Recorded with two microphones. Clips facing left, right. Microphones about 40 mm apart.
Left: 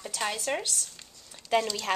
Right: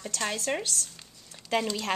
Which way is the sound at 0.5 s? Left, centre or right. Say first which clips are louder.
Even; centre.